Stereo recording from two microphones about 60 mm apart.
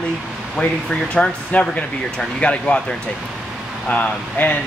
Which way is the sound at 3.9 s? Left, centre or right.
Left.